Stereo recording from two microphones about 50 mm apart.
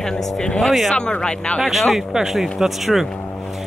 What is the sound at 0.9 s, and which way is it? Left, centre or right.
Speech, centre.